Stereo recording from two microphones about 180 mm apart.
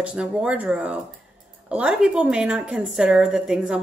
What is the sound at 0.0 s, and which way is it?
A woman's voice, 5° right (ahead or behind).